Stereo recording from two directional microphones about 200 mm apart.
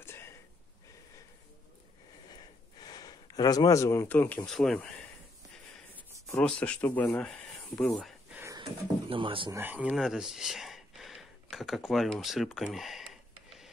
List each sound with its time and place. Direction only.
0.0 s a sound: 10° left (ahead or behind)
2.8 s speech: 20° left (ahead or behind); by 4.9 s 5° left (ahead or behind)
6.3 s speech: 5° left (ahead or behind)
8.4 s a sound: 15° right (ahead or behind)
8.6 s speech: 25° right (ahead or behind)
9.6 s speech: 10° right (ahead or behind)